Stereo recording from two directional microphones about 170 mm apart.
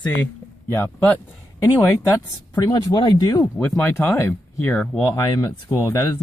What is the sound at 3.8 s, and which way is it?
Speech, 10° left (ahead or behind).